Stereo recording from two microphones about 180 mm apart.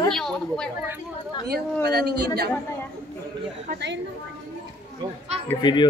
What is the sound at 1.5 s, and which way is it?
A woman's voice, 60° right (ahead or behind).